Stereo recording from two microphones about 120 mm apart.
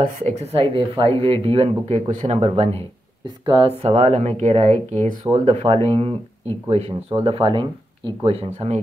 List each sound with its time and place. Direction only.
0.3 s speech: 60° right (ahead or behind)
2.0 s speech: 65° right (ahead or behind)
3.4 s speech: 45° right (ahead or behind)
3.9 s speech: 70° right (ahead or behind); by 8.7 s 55° right (ahead or behind)